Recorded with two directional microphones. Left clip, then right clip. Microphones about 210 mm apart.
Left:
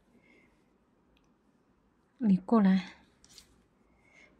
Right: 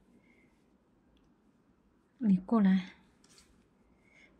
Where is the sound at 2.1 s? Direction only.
15° left (ahead or behind).